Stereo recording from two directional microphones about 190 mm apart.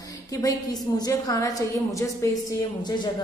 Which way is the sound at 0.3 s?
20° left (ahead or behind).